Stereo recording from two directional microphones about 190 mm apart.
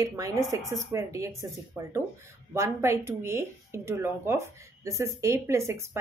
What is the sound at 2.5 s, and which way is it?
Speech, 15° right (ahead or behind).